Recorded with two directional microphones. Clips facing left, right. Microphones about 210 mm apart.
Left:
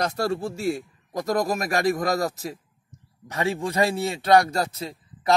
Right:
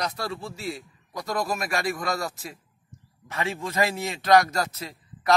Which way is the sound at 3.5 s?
30° left (ahead or behind).